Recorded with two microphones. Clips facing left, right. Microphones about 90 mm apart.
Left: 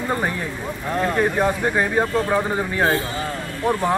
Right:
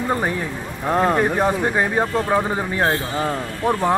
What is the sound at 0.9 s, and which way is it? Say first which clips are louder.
Speech: right 2 dB; 25° right (ahead or behind).